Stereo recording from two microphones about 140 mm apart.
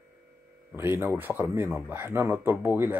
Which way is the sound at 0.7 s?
15° right (ahead or behind).